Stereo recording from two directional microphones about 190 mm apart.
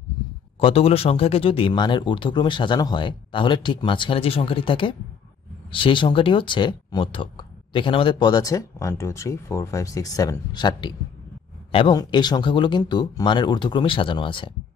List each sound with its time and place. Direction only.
0.6 s speech: 30° left (ahead or behind)